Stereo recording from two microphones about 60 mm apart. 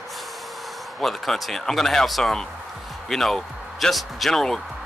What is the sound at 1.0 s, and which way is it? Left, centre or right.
Speech, centre.